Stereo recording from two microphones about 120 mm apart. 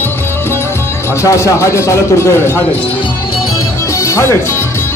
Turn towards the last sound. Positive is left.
turn(degrees=25)  # may be behind; listen again after turning